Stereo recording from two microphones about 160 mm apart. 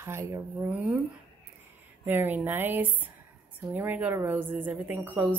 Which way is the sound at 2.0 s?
10° right (ahead or behind).